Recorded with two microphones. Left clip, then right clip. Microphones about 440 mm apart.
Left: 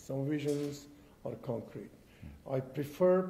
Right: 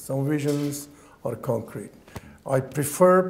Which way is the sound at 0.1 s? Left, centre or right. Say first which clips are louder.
Right 9 dB; right.